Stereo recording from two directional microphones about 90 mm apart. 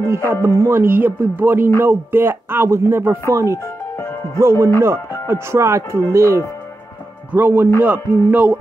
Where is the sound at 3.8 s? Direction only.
30° left (ahead or behind).